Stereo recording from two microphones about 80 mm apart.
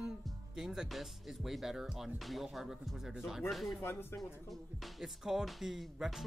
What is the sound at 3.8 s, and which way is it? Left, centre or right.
Speech, left.